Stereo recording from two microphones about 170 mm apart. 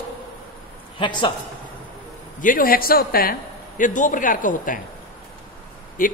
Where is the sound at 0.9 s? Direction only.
30° left (ahead or behind).